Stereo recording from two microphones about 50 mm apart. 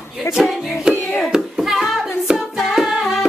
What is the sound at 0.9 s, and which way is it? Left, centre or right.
Hands, left.